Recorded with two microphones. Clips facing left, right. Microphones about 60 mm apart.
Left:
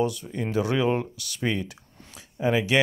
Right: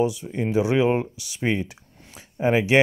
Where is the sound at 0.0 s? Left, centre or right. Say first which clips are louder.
Right 3 dB; centre.